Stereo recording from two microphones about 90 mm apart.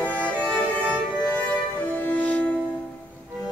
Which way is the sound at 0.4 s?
15° left (ahead or behind).